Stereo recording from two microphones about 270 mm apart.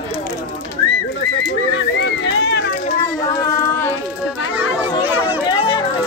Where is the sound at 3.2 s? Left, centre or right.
Centre.